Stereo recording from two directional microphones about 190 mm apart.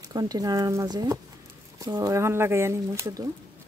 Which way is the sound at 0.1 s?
20° right (ahead or behind).